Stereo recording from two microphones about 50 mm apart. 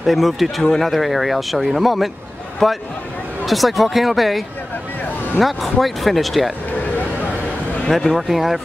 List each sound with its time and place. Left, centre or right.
0.0 s speech: centre
7.9 s speech: centre